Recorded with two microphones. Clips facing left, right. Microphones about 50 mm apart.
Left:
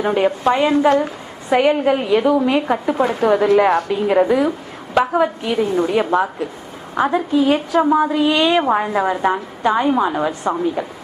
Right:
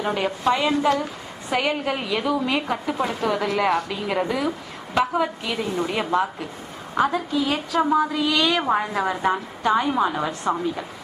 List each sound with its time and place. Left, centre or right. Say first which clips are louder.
0.0 s a woman's voice: left 6 dB; left
1.5 s a woman's voice: left 9 dB; centre
8.5 s a woman's voice: left 6 dB; centre